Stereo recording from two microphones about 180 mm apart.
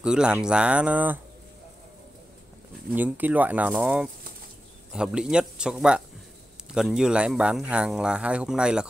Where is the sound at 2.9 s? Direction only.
10° right (ahead or behind).